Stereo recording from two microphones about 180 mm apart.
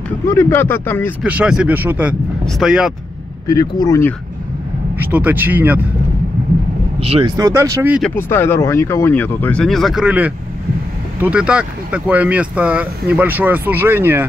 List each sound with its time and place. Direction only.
0.3 s speech: 15° left (ahead or behind)
1.2 s speech: 5° right (ahead or behind)
3.4 s speech: 20° left (ahead or behind)
4.9 s speech: 10° right (ahead or behind)
7.0 s speech: 30° right (ahead or behind)
7.3 s speech: 20° right (ahead or behind)
8.0 s speech: 10° left (ahead or behind); by 14.2 s 10° right (ahead or behind)